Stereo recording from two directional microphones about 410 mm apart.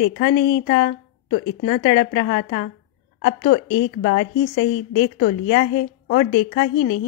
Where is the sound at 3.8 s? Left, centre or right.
Centre.